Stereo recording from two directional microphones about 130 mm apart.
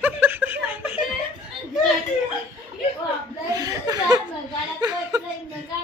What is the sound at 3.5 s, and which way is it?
Chuckle, 30° right (ahead or behind).